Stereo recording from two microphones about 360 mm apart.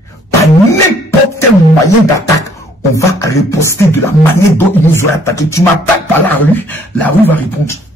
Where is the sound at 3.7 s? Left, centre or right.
Centre.